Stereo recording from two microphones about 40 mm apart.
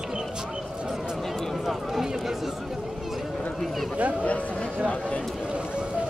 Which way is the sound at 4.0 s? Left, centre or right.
Right.